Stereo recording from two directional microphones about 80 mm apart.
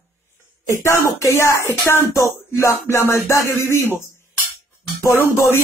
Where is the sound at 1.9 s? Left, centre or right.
Left.